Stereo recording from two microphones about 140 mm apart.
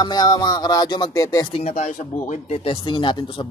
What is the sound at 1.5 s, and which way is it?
Speech, 50° left (ahead or behind).